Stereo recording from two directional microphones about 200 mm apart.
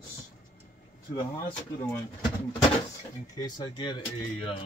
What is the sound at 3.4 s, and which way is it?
Speech, 20° left (ahead or behind).